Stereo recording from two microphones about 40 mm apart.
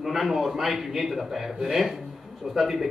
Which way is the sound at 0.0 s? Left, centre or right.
Centre.